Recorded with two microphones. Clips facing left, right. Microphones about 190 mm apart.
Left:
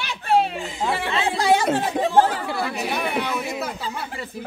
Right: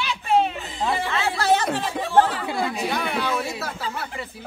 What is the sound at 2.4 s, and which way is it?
Speech, 25° right (ahead or behind).